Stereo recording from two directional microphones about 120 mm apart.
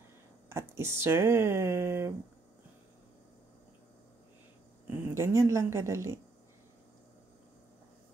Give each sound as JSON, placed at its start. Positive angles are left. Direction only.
{"t": 0.5, "sound": "speech", "side_deg": -20}
{"t": 4.8, "sound": "speech", "side_deg": -25}